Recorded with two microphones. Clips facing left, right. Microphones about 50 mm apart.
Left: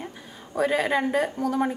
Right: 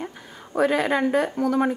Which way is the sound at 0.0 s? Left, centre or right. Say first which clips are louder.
Right 3 dB; right.